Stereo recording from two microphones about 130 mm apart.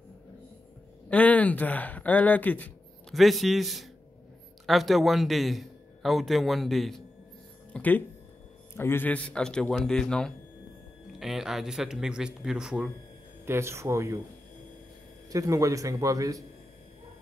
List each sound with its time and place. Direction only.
1.1 s speech: 10° left (ahead or behind)
3.1 s a man's voice: centre (ahead or behind)
7.7 s a man's voice: 15° left (ahead or behind); by 12.9 s 5° right (ahead or behind)
13.5 s a man's voice: 20° right (ahead or behind)
15.2 s a man's voice: 25° right (ahead or behind)